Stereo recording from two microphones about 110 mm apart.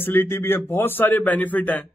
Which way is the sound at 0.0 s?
20° left (ahead or behind).